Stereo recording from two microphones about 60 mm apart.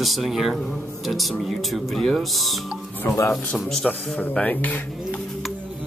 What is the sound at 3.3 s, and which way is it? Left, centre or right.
Speech, centre.